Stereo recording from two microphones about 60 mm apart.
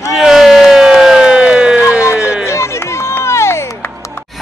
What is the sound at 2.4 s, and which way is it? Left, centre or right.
Run, left.